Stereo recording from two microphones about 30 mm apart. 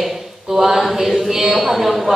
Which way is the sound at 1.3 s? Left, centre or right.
Centre.